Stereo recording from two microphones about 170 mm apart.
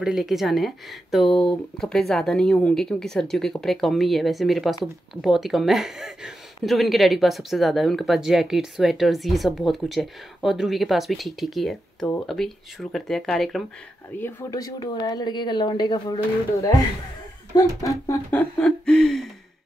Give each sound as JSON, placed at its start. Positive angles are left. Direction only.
{"t": 0.0, "sound": "speech", "side_deg": -5}
{"t": 14.1, "sound": "speech", "side_deg": 15}
{"t": 17.6, "sound": "a sound", "side_deg": 20}